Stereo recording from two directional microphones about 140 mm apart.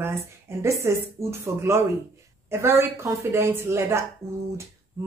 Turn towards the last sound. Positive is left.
turn(degrees=-20)  # may be behind; listen again after turning